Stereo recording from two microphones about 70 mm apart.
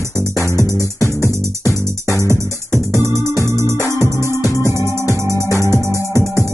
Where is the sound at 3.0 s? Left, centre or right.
Right.